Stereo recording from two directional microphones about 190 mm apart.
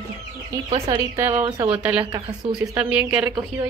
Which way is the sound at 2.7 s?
5° right (ahead or behind).